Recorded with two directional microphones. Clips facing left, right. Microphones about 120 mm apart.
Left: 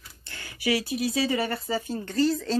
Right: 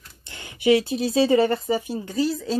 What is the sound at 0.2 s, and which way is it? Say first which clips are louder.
Speech: right 6 dB; 20° right (ahead or behind).